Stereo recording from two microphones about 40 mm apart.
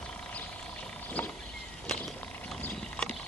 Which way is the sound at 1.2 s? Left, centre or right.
Left.